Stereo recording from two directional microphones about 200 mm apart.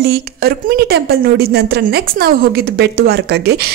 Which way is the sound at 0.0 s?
50° right (ahead or behind).